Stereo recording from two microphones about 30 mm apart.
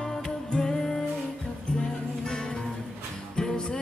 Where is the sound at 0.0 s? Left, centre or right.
Left.